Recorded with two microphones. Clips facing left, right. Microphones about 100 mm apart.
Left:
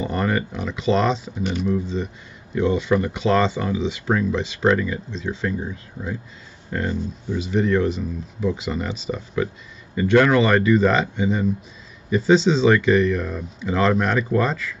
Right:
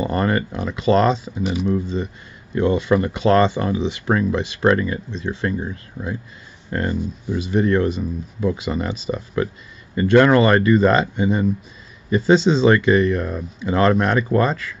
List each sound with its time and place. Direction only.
0.0 s speech: 55° right (ahead or behind)
1.4 s speech: 5° right (ahead or behind)
2.5 s speech: 55° right (ahead or behind)
7.3 s speech: 50° right (ahead or behind)